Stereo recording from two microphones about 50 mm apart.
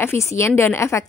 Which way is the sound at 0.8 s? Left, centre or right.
Left.